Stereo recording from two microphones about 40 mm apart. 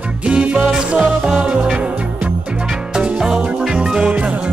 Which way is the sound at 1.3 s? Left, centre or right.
Centre.